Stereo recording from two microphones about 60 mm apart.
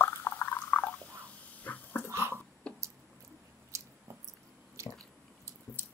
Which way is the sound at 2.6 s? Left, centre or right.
Centre.